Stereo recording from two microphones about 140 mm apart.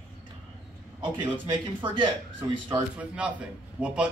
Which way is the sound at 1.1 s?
35° right (ahead or behind).